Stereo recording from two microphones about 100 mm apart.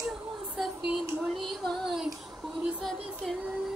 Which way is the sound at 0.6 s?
5° right (ahead or behind).